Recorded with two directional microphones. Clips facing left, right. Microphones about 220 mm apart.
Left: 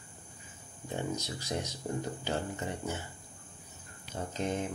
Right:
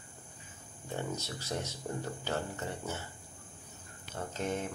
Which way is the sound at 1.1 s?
15° left (ahead or behind).